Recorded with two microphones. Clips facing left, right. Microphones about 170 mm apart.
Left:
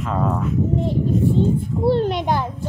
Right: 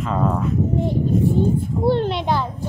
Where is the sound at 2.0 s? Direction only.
45° left (ahead or behind).